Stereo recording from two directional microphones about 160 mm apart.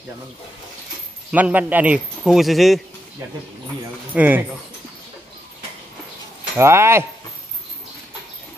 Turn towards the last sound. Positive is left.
turn(degrees=-15)  # may be behind; listen again after turning